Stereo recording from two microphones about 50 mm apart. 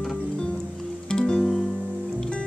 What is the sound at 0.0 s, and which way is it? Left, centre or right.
Music, centre.